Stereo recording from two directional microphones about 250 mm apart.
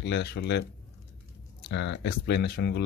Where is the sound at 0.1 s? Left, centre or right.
Left.